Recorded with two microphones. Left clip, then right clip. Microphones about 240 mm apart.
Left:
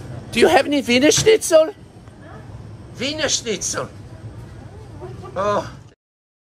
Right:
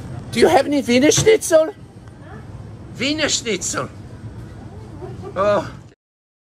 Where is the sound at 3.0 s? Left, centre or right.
Centre.